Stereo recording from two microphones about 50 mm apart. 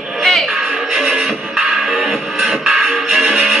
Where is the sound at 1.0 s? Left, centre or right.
Centre.